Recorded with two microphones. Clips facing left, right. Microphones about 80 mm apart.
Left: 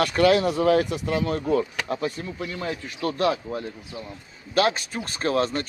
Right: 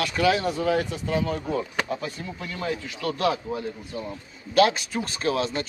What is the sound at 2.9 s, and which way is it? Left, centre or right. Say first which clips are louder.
Speech: left 3 dB; left.